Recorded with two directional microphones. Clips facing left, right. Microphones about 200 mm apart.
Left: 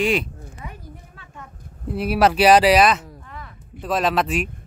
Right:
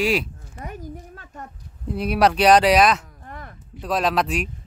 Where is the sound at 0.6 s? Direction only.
45° right (ahead or behind).